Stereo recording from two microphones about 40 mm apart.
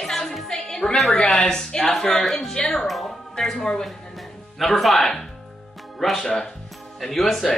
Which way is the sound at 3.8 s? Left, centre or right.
Centre.